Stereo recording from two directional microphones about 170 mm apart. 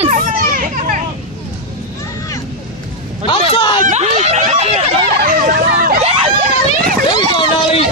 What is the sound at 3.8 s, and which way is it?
Speech, 40° right (ahead or behind).